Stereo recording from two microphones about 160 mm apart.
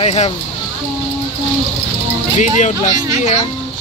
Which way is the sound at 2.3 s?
50° left (ahead or behind).